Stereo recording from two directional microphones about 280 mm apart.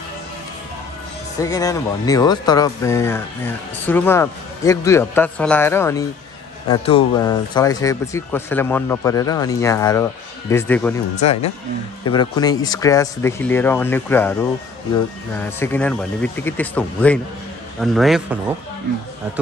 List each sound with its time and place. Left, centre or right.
1.4 s speech: centre
11.1 s speech: left
12.0 s speech: centre
15.3 s speech: centre